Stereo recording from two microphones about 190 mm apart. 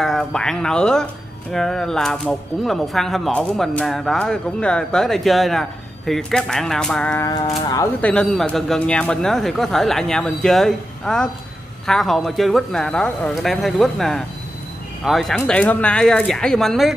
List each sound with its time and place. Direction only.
0.0 s speech: centre (ahead or behind)
7.2 s speech: 25° left (ahead or behind)
7.8 s speech: 5° left (ahead or behind)